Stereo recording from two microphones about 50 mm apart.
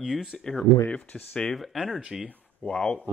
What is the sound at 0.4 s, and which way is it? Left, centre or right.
Speech, centre.